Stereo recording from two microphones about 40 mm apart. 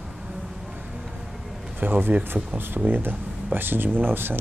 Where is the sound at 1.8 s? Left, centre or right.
Right.